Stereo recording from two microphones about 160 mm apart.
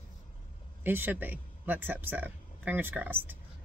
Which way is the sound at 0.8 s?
10° right (ahead or behind).